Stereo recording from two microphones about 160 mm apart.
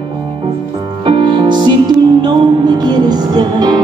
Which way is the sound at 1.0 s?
30° right (ahead or behind).